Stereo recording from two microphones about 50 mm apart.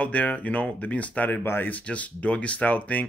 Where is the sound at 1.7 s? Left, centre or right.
Left.